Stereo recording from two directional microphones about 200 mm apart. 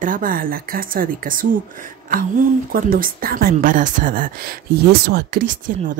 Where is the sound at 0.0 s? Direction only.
45° right (ahead or behind).